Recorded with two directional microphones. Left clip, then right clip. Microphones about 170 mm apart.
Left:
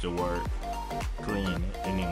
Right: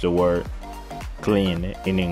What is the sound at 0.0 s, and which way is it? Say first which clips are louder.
Speech: right 11 dB; 35° right (ahead or behind).